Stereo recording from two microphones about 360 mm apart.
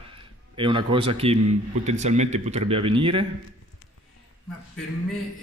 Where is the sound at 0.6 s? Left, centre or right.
Centre.